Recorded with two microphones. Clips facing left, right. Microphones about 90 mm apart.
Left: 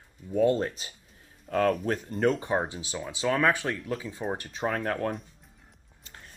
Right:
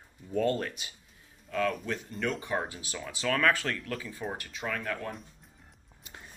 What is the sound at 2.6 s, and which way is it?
Speech, 25° left (ahead or behind).